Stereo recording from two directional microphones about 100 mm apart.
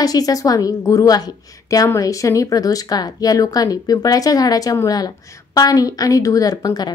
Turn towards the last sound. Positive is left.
turn(degrees=40)  # may be behind; listen again after turning